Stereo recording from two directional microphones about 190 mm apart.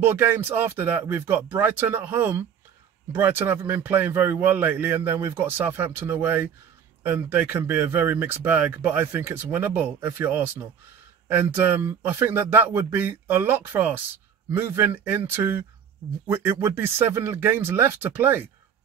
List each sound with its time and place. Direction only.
0.0 s speech: 10° right (ahead or behind)